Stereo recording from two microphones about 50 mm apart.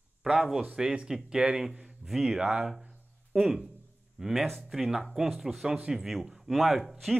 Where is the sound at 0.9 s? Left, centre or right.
Centre.